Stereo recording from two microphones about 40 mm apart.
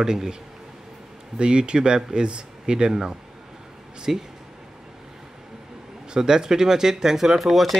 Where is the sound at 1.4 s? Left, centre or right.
Right.